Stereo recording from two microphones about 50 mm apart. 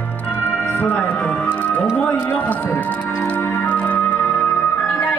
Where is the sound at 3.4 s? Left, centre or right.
Left.